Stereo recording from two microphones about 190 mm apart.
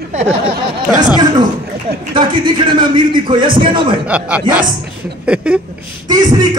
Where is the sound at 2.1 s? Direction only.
25° right (ahead or behind).